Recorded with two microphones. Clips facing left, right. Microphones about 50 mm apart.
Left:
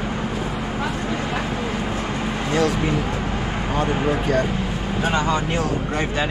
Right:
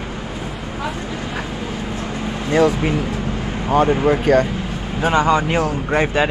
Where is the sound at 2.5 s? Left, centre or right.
Centre.